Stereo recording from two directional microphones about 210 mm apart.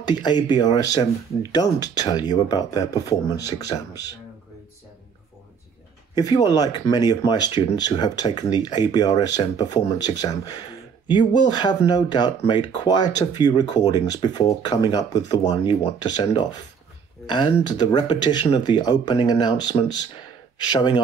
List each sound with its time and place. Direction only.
0.0 s speech: 20° left (ahead or behind)
6.1 s speech: 20° left (ahead or behind)